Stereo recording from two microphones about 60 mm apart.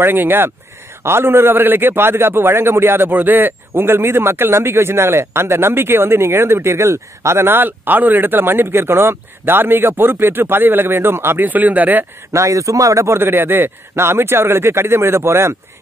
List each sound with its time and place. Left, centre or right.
0.0 s a man's voice: right
11.4 s speech: right
12.3 s a man's voice: right
13.2 s a man's voice: right